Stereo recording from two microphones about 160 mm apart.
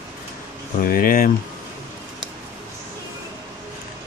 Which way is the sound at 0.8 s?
65° left (ahead or behind).